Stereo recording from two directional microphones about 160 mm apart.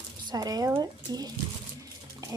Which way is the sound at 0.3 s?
25° right (ahead or behind).